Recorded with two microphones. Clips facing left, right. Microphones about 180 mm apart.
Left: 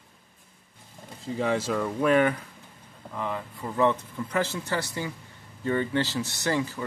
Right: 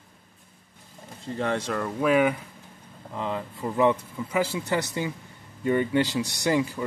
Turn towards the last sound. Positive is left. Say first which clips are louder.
# right 3 dB
turn(degrees=-15)  # may be behind; listen again after turning